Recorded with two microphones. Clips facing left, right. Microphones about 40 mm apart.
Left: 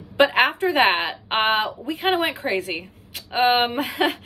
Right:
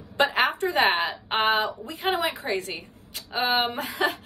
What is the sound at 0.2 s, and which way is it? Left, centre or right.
A woman's voice, left.